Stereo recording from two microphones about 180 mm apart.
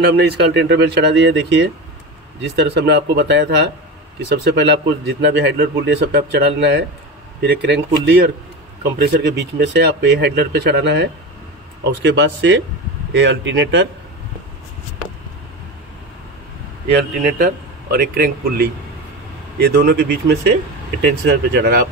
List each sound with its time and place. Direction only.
0.0 s a man's voice: 65° right (ahead or behind); by 1.7 s 85° right
2.4 s a man's voice: 70° right (ahead or behind)
8.9 s a man's voice: 65° right (ahead or behind); by 13.8 s 90° right
17.9 s a man's voice: 55° right (ahead or behind)